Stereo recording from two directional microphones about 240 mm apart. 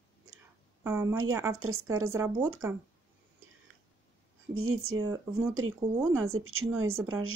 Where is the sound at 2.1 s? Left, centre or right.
Centre.